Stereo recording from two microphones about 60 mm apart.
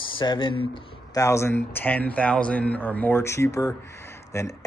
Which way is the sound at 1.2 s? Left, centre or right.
Left.